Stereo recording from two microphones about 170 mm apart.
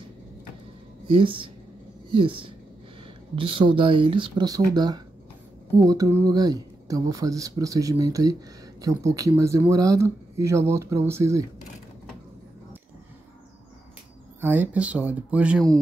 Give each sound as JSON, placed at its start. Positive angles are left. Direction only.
{"t": 1.0, "sound": "speech", "side_deg": -30}
{"t": 14.4, "sound": "speech", "side_deg": -10}